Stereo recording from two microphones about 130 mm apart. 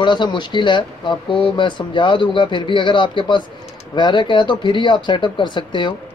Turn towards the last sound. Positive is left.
turn(degrees=35)  # may be behind; listen again after turning